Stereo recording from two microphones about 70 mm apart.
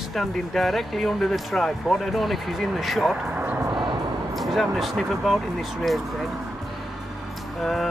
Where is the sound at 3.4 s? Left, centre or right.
Right.